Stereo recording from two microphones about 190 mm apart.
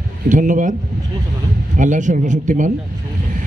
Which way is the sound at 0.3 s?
45° right (ahead or behind).